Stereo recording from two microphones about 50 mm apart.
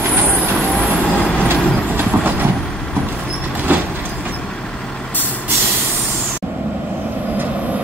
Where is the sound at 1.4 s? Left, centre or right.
Right.